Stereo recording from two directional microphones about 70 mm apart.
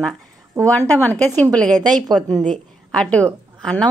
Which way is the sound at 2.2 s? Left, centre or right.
Centre.